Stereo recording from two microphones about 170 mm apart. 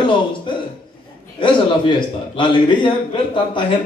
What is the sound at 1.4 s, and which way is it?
A man's voice, 30° left (ahead or behind).